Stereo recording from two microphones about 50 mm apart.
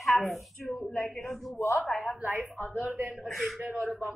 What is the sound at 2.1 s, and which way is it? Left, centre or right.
A woman's voice, right.